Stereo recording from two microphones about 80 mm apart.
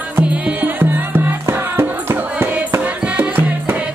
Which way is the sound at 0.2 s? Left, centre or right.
Centre.